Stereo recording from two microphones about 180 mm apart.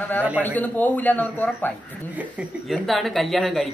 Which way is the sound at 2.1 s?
10° right (ahead or behind).